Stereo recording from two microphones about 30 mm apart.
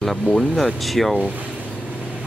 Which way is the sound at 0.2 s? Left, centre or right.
Left.